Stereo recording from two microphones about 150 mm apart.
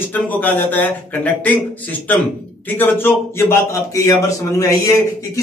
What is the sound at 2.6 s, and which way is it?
A man's voice, 15° left (ahead or behind).